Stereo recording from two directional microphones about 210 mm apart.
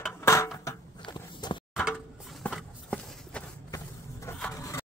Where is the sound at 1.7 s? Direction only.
Centre (ahead or behind).